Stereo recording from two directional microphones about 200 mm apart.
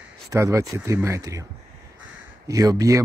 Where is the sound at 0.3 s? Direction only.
15° right (ahead or behind).